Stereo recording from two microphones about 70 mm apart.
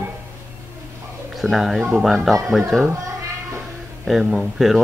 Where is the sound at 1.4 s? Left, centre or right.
Centre.